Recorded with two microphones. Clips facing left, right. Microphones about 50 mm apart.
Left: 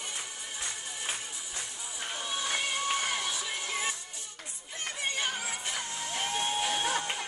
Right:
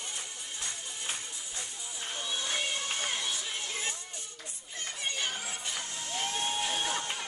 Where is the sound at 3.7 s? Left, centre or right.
Centre.